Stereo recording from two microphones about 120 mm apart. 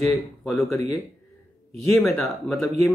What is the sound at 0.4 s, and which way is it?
Speech, centre (ahead or behind).